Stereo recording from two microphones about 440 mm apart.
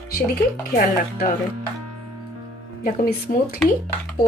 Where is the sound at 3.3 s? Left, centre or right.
Centre.